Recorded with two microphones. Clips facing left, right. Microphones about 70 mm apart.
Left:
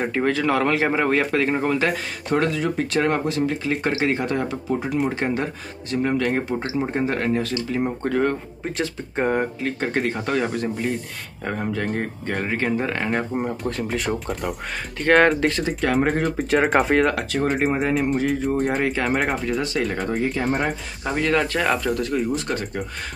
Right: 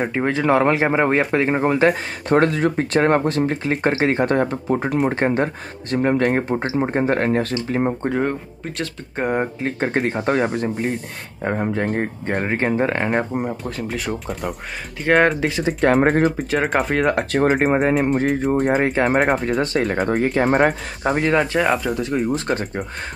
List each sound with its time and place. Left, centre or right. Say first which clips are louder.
0.1 s speech: right 4 dB; right
8.0 s speech: even; centre
8.7 s speech: left 1 dB; centre
9.6 s speech: right 2 dB; right
13.4 s speech: even; centre
15.8 s speech: right 6 dB; right
16.3 s speech: even; centre
17.2 s speech: right 4 dB; right
21.1 s speech: right 3 dB; right
21.5 s speech: right 3 dB; centre
22.1 s speech: right 3 dB; right